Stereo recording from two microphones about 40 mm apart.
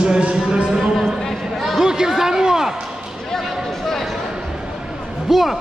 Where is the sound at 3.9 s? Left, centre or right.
Centre.